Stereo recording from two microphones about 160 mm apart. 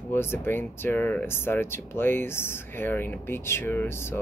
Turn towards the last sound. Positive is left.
turn(degrees=15)  # may be behind; listen again after turning